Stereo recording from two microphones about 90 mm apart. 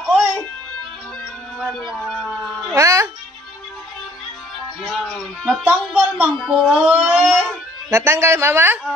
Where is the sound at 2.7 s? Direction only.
35° right (ahead or behind).